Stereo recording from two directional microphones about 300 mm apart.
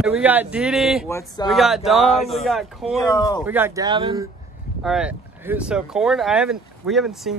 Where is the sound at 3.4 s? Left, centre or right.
Centre.